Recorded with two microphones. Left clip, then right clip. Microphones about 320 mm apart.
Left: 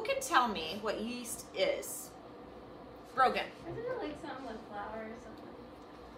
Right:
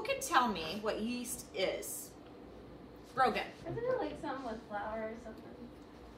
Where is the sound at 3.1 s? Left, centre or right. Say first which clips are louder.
Left 2 dB; centre.